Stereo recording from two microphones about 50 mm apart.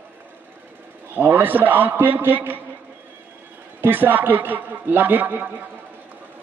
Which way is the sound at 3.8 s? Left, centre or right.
Right.